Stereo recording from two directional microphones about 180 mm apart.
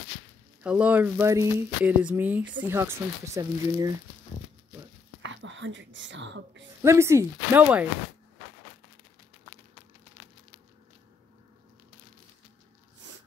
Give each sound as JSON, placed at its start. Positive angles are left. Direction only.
{"t": 0.7, "sound": "speech", "side_deg": -5}
{"t": 5.2, "sound": "whispering", "side_deg": -90}
{"t": 6.8, "sound": "speech", "side_deg": -15}